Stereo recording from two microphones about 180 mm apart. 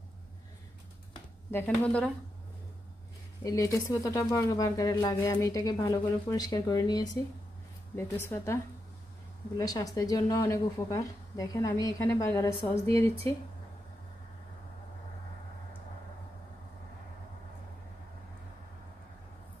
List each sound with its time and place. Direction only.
1.5 s speech: 10° left (ahead or behind)
3.4 s speech: 20° left (ahead or behind)
9.6 s speech: 20° left (ahead or behind)
12.8 s speech: 30° right (ahead or behind)